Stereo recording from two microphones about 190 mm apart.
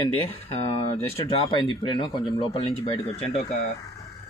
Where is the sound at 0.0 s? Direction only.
30° left (ahead or behind).